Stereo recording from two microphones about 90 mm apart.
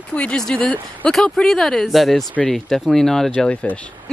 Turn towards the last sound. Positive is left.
turn(degrees=10)  # may be behind; listen again after turning